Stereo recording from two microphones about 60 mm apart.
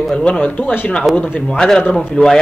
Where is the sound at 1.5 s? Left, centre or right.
Centre.